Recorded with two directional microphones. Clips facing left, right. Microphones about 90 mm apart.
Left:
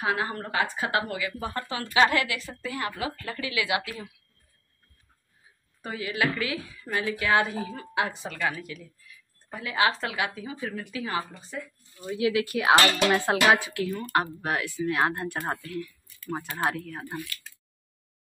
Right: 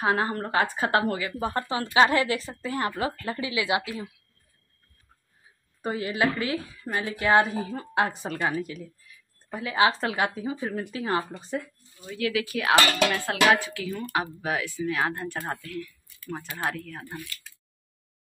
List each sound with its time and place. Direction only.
0.0 s a woman's voice: 35° right (ahead or behind)
3.1 s speech: 25° right (ahead or behind)
5.8 s a woman's voice: 40° right (ahead or behind)
8.4 s a woman's voice: 30° right (ahead or behind)
12.1 s speech: 15° left (ahead or behind)
13.1 s music: 20° left (ahead or behind)
13.7 s speech: centre (ahead or behind)